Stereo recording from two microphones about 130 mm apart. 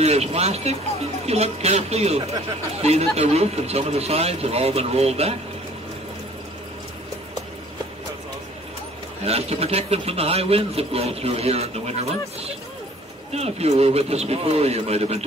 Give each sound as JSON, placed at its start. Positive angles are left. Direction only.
{"t": 0.0, "sound": "a man's voice", "side_deg": -55}
{"t": 9.2, "sound": "a man's voice", "side_deg": -50}